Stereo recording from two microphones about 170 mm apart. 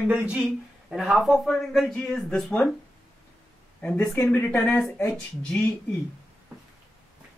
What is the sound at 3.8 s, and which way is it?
Speech, 5° left (ahead or behind).